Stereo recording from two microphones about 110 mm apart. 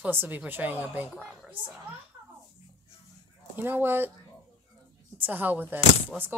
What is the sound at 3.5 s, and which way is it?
Speech, 20° right (ahead or behind).